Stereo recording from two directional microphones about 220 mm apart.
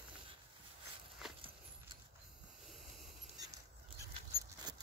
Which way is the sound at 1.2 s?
Centre (ahead or behind).